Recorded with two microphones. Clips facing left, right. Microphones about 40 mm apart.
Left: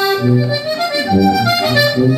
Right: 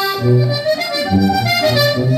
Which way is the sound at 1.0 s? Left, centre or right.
Centre.